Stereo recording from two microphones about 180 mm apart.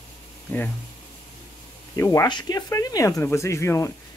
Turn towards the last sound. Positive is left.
turn(degrees=15)  # may be behind; listen again after turning